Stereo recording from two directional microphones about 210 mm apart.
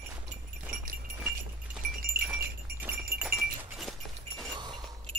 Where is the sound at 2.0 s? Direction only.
45° right (ahead or behind).